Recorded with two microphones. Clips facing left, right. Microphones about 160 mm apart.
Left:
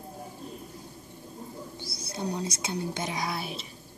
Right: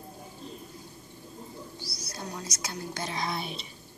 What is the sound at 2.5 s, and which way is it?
Speech, 25° left (ahead or behind).